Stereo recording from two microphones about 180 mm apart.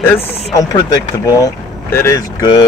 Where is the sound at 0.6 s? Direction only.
20° left (ahead or behind).